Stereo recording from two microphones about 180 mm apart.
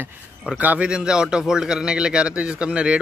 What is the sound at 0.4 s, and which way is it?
A man's voice, 5° right (ahead or behind).